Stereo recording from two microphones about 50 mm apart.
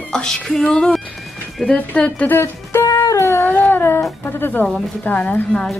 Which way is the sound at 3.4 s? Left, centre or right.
Left.